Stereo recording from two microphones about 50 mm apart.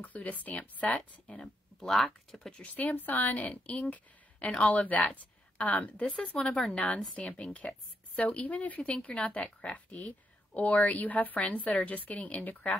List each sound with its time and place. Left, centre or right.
0.0 s speech: left
1.2 s speech: centre
2.6 s speech: left
6.1 s a woman's voice: centre